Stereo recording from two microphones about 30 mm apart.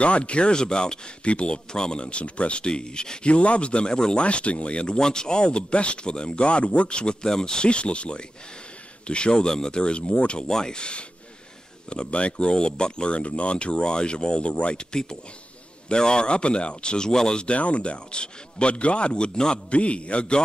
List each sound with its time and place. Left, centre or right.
0.0 s speech: left
0.6 s speech: left
1.2 s speech: left
3.3 s speech: left
4.9 s speech: left
7.2 s speech: left
10.5 s speech: left
17.1 s speech: centre
17.4 s speech: left
19.7 s speech: left